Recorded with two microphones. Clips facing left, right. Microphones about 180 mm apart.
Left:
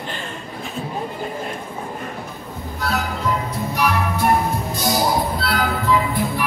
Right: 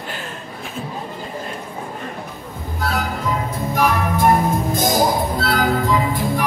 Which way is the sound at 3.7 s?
50° right (ahead or behind).